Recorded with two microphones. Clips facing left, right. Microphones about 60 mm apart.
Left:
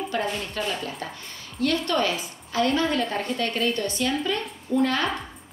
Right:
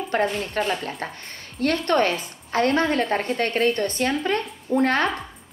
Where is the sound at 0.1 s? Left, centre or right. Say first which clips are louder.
Right 5 dB; right.